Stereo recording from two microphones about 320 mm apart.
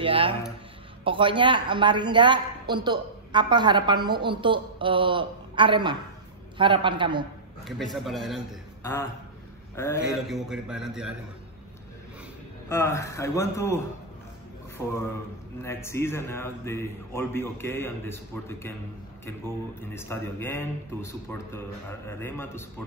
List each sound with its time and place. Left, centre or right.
0.0 s a sound: centre
1.0 s a woman's voice: centre
7.6 s a man's voice: centre
10.0 s a man's voice: centre
12.6 s a man's voice: centre
15.6 s a man's voice: centre
19.8 s a man's voice: centre